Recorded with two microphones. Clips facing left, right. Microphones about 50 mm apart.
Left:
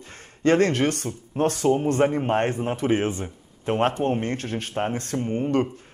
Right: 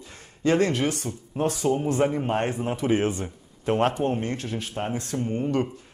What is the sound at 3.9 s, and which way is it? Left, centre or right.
Speech, left.